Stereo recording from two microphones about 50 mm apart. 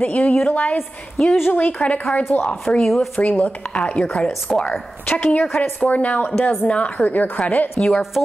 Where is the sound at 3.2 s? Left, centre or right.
Left.